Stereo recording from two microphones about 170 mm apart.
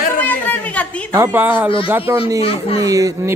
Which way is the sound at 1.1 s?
15° right (ahead or behind).